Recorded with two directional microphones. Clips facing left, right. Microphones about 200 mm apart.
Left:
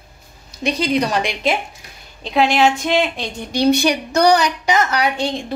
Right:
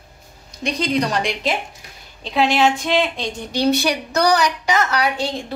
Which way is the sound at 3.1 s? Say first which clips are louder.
Left 2 dB; 15° left (ahead or behind).